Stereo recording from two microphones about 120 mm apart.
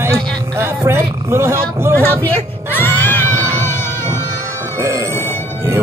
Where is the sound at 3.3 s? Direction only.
25° right (ahead or behind).